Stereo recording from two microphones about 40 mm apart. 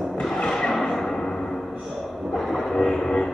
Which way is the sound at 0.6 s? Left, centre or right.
Centre.